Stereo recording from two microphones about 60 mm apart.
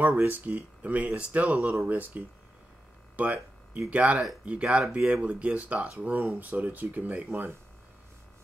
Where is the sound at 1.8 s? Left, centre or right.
Right.